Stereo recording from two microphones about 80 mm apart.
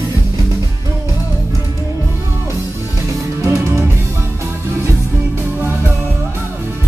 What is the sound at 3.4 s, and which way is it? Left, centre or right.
Music, right.